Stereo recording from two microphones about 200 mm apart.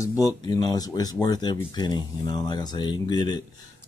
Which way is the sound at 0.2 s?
20° left (ahead or behind).